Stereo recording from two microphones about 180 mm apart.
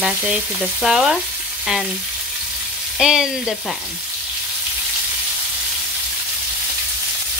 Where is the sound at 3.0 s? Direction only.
Centre (ahead or behind).